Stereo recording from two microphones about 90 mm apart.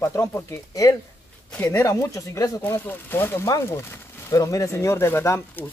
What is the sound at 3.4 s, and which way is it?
Speech, 35° left (ahead or behind).